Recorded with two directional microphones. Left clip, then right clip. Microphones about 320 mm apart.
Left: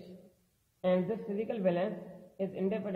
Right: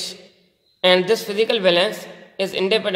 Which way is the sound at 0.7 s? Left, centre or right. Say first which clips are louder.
Right 15 dB; right.